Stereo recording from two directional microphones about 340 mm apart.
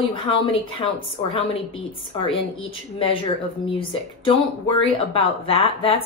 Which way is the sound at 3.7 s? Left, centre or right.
Centre.